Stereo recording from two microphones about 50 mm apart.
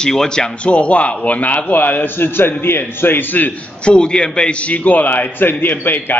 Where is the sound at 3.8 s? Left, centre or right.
Left.